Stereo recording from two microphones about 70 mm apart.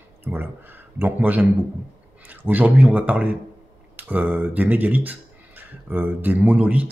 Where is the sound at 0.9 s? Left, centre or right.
Right.